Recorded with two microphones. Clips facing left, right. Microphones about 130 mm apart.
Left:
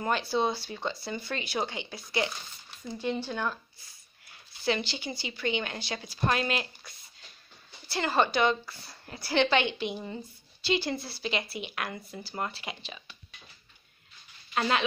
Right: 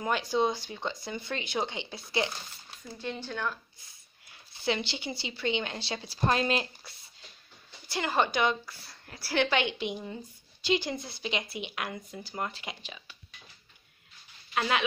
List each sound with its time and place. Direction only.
0.0 s a woman's voice: 15° right (ahead or behind)
3.0 s speech: 10° left (ahead or behind)
4.6 s a woman's voice: 20° right (ahead or behind)
7.9 s a woman's voice: 15° right (ahead or behind)
14.5 s speech: 5° right (ahead or behind)